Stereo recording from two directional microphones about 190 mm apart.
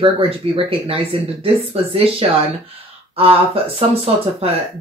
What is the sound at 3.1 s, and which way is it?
Speech, 30° right (ahead or behind).